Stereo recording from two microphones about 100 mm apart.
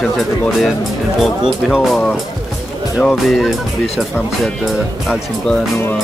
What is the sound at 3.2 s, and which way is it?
Speech, centre (ahead or behind).